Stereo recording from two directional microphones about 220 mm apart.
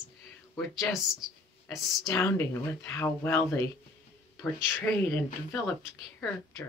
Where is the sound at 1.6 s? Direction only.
10° left (ahead or behind).